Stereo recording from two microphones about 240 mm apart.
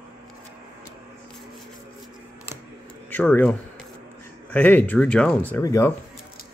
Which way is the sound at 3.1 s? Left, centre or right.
Centre.